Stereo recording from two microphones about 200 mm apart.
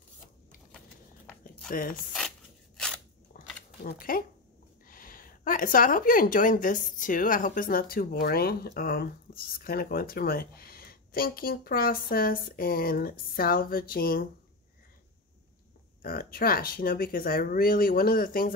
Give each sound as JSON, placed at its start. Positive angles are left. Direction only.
{"t": 1.7, "sound": "speech", "side_deg": 45}
{"t": 3.3, "sound": "a sound", "side_deg": 45}
{"t": 3.8, "sound": "speech", "side_deg": 45}
{"t": 16.0, "sound": "speech", "side_deg": 45}